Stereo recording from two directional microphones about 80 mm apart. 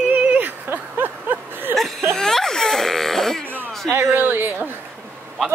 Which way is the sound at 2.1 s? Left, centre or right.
Centre.